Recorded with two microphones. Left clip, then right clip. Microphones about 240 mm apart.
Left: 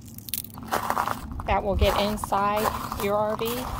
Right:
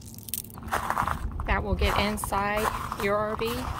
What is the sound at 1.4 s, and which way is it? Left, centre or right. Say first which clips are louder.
A woman's voice: left 5 dB; centre.